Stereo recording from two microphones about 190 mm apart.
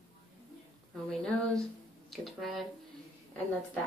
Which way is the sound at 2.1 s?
Centre (ahead or behind).